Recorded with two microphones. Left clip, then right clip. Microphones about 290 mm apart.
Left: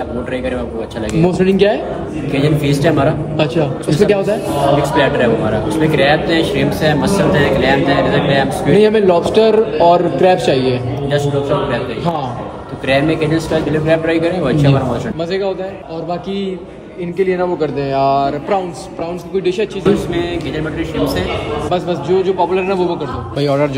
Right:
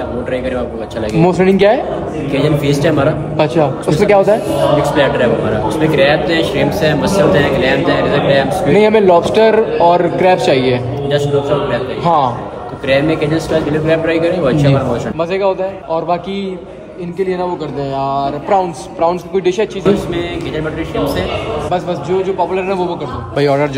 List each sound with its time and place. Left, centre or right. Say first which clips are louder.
1.4 s a man's voice: right 2 dB; centre
10.5 s a man's voice: right 2 dB; centre
11.1 s a man's voice: right 2 dB; centre
12.8 s a man's voice: right 1 dB; centre
17.2 s a man's voice: left 2 dB; centre